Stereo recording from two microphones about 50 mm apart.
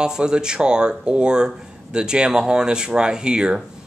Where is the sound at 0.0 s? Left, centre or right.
Centre.